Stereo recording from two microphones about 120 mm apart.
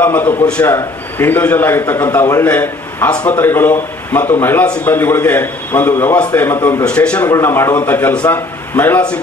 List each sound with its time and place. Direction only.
0.0 s a man's voice: 15° left (ahead or behind)
7.2 s a man's voice: 25° left (ahead or behind)